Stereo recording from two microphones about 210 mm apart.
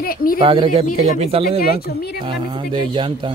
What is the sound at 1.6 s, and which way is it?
Speech, 45° left (ahead or behind).